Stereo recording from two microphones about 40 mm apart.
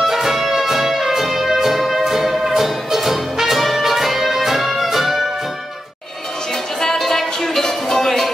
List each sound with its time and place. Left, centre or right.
0.0 s music: centre
6.8 s music: centre